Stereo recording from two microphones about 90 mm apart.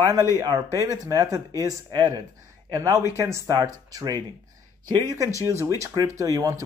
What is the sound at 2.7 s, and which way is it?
Speech, 35° right (ahead or behind).